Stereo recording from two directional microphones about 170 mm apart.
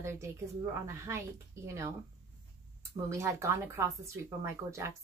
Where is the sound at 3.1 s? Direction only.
15° right (ahead or behind).